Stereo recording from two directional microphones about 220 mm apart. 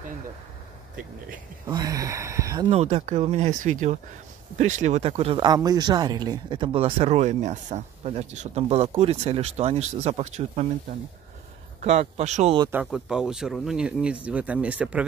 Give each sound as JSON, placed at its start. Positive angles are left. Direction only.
{"t": 1.7, "sound": "speech", "side_deg": -15}
{"t": 2.7, "sound": "speech", "side_deg": -30}
{"t": 12.5, "sound": "speech", "side_deg": -15}
{"t": 12.8, "sound": "speech", "side_deg": -5}